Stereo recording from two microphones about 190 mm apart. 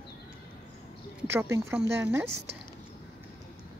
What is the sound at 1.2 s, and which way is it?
Speech, 15° right (ahead or behind).